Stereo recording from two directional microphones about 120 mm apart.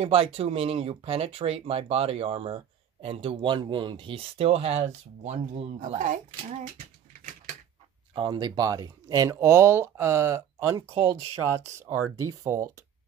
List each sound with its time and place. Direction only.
0.0 s speech: 50° right (ahead or behind); by 6.7 s 90° right
8.1 s speech: 40° right (ahead or behind)